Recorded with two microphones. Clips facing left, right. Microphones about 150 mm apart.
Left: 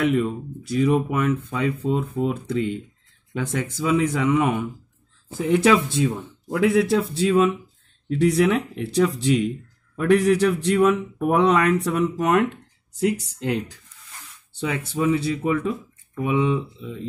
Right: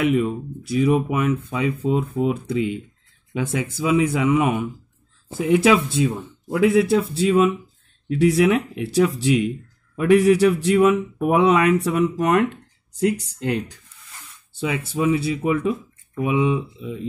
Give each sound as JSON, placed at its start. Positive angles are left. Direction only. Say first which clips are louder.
{"t": 0.0, "sound": "speech", "louder": "right 1 dB", "side_deg": -10}